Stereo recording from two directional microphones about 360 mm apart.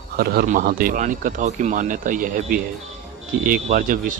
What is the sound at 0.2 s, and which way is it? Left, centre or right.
Speech, right.